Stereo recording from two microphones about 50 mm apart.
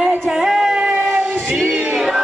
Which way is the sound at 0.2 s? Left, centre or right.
Centre.